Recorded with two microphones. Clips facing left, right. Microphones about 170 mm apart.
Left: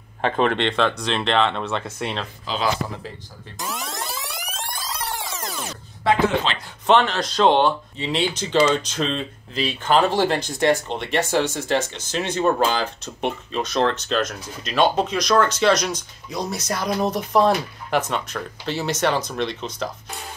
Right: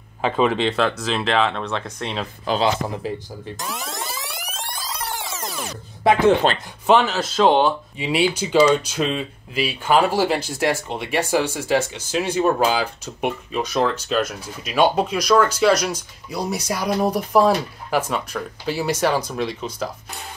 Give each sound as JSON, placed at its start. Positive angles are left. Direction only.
{"t": 0.2, "sound": "speech", "side_deg": -5}
{"t": 2.5, "sound": "speech", "side_deg": -55}
{"t": 3.6, "sound": "music", "side_deg": 0}
{"t": 6.9, "sound": "speech", "side_deg": -5}